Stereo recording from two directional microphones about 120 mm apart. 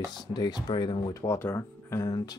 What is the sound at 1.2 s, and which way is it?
Speech, 20° left (ahead or behind).